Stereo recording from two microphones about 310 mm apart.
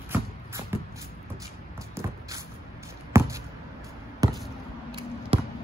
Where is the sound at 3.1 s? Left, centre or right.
Centre.